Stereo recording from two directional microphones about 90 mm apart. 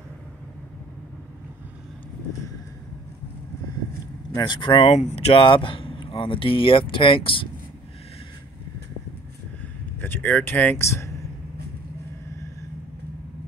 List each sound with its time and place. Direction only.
4.4 s speech: 60° left (ahead or behind); by 7.4 s 80° left
9.9 s speech: 25° left (ahead or behind)
10.9 s a sound: 35° left (ahead or behind)